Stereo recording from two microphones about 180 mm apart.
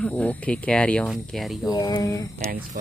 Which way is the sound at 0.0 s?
10° left (ahead or behind).